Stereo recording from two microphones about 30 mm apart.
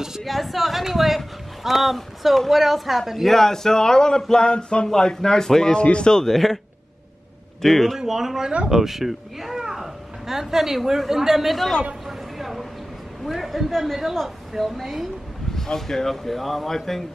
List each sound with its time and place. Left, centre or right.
0.2 s speech: centre
3.3 s speech: centre
4.4 s a sound: left
4.8 s speech: centre
5.8 s a sound: left
6.1 s speech: centre
7.6 s speech: centre
8.0 s a child's voice: centre
12.1 s a sound: centre
13.3 s a woman's voice: centre
15.5 s speech: centre
16.3 s speech: centre